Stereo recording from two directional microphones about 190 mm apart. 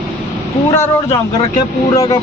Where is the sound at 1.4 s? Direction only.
20° left (ahead or behind).